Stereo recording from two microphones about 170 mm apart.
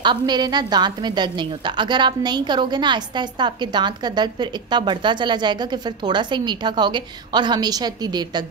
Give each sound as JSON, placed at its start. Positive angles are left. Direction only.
{"t": 0.0, "sound": "a woman's voice", "side_deg": -25}